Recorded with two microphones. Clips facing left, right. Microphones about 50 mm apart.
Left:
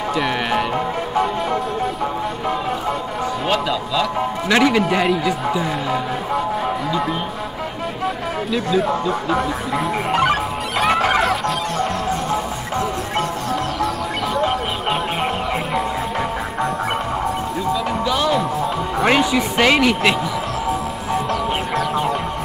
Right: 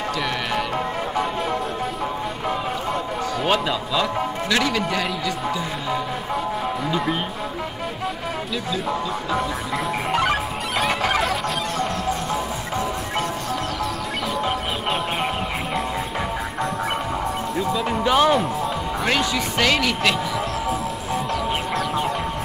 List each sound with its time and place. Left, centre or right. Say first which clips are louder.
0.1 s music: left 7 dB; centre
3.4 s a man's voice: even; centre
4.5 s speech: left 8 dB; left
10.1 s music: left 4 dB; centre
18.0 s speech: right 4 dB; right
19.0 s speech: left 6 dB; centre
20.6 s music: left 3 dB; centre